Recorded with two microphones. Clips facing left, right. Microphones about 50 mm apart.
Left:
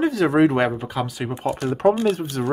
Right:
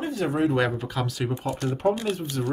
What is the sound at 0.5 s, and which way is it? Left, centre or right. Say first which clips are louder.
Speech: left 3 dB; left.